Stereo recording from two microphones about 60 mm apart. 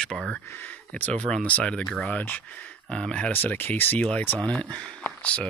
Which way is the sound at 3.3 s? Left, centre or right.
Left.